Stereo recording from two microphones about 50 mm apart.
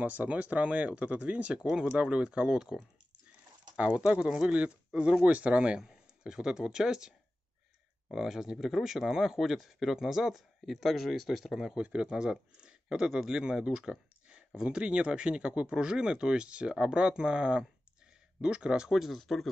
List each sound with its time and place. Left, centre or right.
0.0 s speech: right; by 2.8 s centre
3.7 s speech: right; by 11.7 s centre
11.7 s speech: centre
18.9 s speech: centre